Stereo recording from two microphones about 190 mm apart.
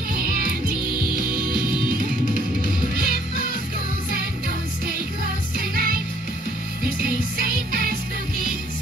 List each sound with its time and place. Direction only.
0.1 s music: 50° right (ahead or behind)
5.6 s music: 50° right (ahead or behind)